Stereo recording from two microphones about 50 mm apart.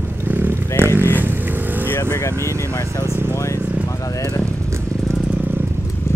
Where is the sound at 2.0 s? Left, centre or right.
Left.